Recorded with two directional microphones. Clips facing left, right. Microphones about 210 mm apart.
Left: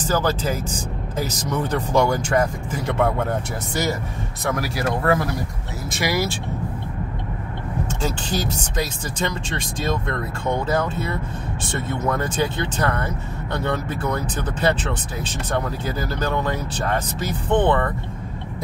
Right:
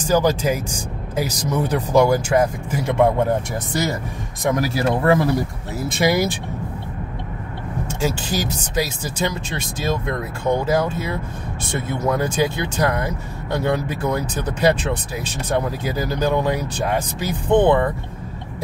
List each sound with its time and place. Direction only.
0.0 s speech: 15° right (ahead or behind)
4.5 s speech: 25° right (ahead or behind)
8.0 s speech: 10° right (ahead or behind)